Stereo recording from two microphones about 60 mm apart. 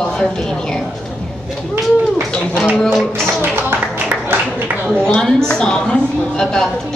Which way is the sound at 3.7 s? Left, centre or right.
Right.